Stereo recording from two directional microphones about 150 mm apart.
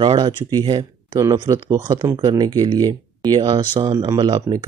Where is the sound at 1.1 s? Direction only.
20° right (ahead or behind).